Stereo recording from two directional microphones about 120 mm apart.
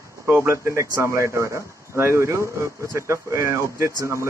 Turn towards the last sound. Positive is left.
turn(degrees=-25)  # may be behind; listen again after turning